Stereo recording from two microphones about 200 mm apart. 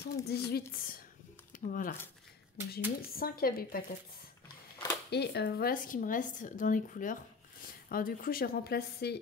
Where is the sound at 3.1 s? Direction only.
50° left (ahead or behind).